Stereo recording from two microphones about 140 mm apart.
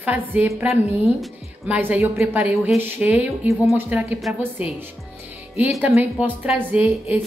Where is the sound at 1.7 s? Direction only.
10° right (ahead or behind).